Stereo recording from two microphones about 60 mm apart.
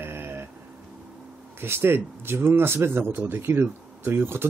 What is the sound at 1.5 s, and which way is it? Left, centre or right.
Speech, right.